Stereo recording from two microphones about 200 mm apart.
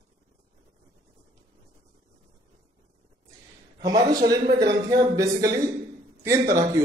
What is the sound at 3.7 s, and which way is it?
A man's voice, 20° right (ahead or behind).